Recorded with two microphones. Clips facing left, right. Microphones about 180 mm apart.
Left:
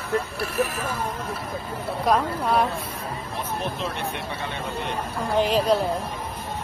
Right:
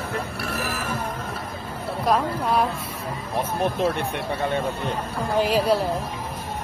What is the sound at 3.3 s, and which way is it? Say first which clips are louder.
Speech: right 7 dB; 55° right (ahead or behind).